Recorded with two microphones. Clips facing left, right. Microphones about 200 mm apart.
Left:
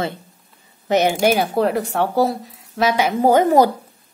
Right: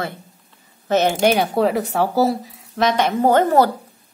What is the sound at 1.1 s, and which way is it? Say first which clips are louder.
Speech: even; 5° left (ahead or behind).